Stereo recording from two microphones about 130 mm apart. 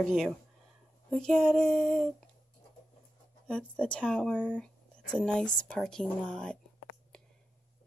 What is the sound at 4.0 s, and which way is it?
Speech, centre (ahead or behind).